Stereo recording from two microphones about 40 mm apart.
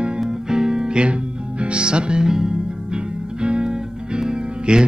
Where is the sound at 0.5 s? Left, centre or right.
Centre.